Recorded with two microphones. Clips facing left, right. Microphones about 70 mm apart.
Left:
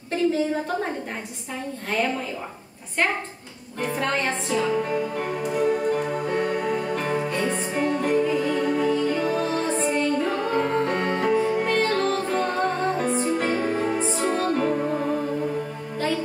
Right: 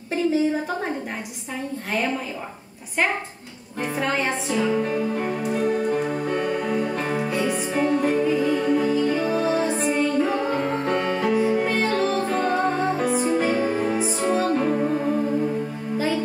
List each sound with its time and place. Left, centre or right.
0.1 s a sound: centre
3.8 s speech: centre
5.3 s music: centre